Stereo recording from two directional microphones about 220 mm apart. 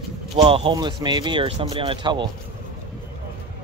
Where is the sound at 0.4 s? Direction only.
25° right (ahead or behind).